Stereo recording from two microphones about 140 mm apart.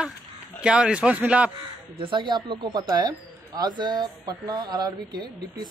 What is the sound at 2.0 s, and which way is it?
Speech, 35° right (ahead or behind).